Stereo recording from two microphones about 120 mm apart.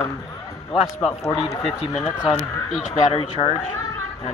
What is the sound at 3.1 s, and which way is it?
Speech, 55° left (ahead or behind).